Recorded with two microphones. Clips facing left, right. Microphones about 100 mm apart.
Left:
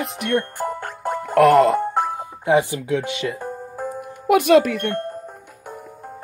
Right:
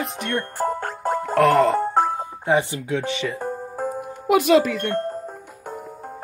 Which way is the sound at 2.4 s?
15° left (ahead or behind).